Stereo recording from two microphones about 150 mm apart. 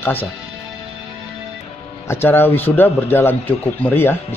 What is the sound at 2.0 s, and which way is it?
Speech, 15° left (ahead or behind).